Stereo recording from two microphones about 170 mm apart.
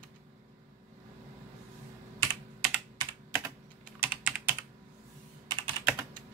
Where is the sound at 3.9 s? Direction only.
10° right (ahead or behind).